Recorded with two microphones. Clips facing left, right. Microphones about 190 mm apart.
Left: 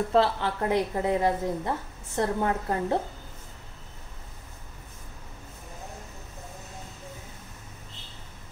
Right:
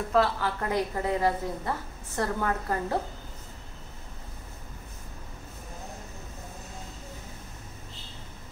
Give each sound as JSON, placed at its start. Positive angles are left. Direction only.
{"t": 0.1, "sound": "a woman's voice", "side_deg": 25}